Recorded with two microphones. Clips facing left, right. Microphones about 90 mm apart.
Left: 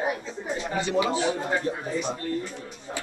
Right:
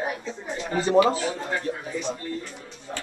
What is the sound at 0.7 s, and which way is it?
Speech, 40° right (ahead or behind).